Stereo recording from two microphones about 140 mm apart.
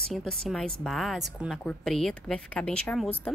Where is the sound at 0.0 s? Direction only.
5° left (ahead or behind).